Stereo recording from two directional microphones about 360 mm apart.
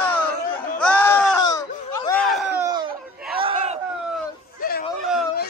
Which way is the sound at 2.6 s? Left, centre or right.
Centre.